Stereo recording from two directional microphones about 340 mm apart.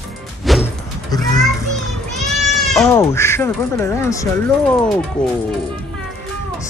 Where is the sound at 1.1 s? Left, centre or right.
Centre.